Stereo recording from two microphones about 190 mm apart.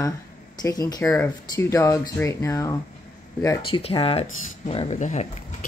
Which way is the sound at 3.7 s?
30° left (ahead or behind).